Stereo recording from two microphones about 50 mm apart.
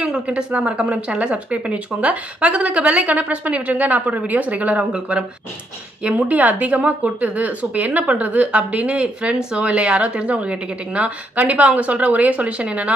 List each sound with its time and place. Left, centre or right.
0.3 s speech: right